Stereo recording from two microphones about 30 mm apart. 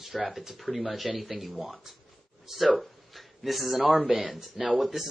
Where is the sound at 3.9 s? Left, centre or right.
Right.